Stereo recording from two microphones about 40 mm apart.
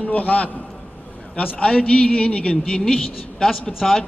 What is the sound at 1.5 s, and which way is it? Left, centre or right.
A man's voice, left.